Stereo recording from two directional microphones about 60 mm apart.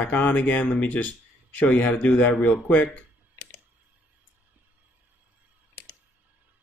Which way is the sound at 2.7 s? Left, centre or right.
Left.